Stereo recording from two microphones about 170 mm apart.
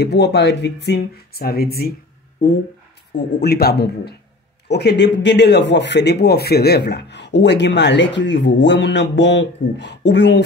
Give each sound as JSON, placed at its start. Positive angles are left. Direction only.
{"t": 0.0, "sound": "speech", "side_deg": 75}
{"t": 4.6, "sound": "speech", "side_deg": 80}